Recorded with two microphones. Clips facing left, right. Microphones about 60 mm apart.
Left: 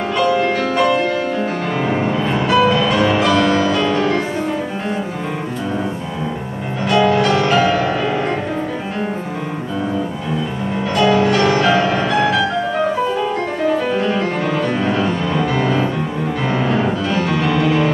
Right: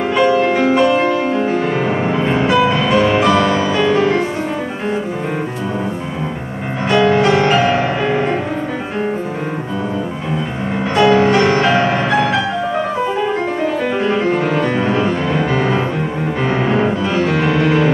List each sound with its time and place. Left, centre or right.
0.1 s music: centre
2.0 s music: right
6.9 s music: right
11.0 s music: right
13.9 s music: right